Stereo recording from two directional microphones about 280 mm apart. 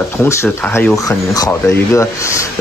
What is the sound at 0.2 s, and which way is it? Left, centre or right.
Speech, centre.